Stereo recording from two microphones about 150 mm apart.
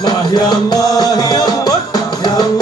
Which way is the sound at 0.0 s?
25° left (ahead or behind).